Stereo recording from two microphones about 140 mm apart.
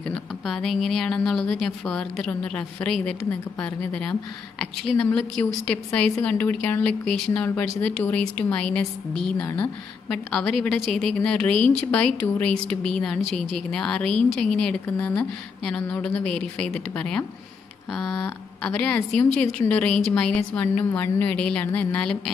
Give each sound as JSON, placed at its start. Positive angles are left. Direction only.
{"t": 0.1, "sound": "speech", "side_deg": 5}
{"t": 18.6, "sound": "speech", "side_deg": 10}